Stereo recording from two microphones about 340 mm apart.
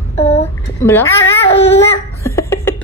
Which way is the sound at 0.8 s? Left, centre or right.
Centre.